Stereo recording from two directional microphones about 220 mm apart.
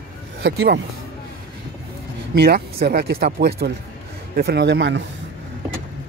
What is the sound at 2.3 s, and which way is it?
Speech, 45° right (ahead or behind).